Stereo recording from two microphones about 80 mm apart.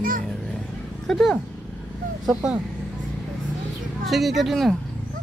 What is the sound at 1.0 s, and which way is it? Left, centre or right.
Speech, centre.